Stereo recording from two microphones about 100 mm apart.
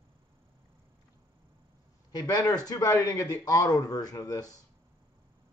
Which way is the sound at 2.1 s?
40° left (ahead or behind).